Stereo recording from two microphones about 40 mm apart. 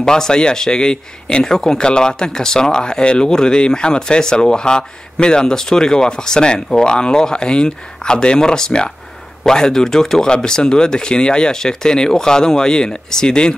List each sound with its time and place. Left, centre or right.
0.0 s a man's voice: centre